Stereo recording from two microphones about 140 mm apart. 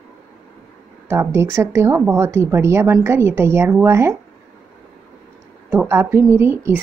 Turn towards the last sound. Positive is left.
turn(degrees=-15)  # may be behind; listen again after turning